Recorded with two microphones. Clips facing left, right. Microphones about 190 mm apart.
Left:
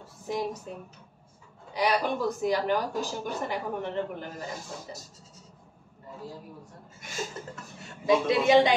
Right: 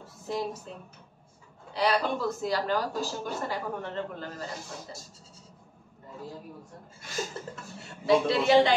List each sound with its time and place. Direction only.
0.3 s speech: 15° left (ahead or behind)
8.0 s a man's voice: 20° left (ahead or behind)